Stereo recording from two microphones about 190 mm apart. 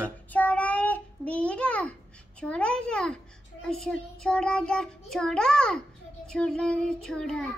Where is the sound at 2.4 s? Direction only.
5° left (ahead or behind).